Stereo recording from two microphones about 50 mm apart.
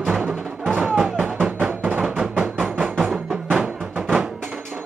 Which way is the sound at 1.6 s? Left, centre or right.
Right.